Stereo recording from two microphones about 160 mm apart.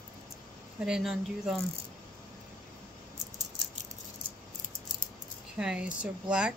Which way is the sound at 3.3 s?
45° right (ahead or behind).